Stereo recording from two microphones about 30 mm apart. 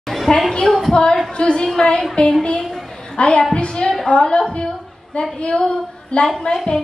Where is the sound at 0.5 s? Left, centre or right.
Centre.